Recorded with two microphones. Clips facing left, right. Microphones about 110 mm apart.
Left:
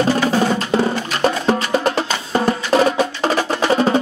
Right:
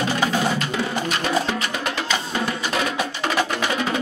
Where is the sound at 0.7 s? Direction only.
35° left (ahead or behind).